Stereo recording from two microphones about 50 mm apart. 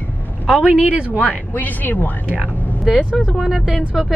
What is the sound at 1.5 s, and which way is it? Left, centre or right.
Speech, left.